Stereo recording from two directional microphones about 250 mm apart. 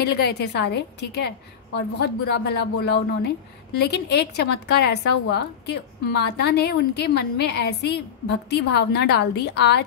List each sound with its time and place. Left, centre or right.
0.0 s a woman's voice: left